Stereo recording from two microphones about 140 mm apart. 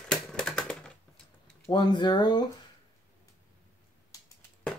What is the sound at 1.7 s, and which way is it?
Speech, 30° left (ahead or behind).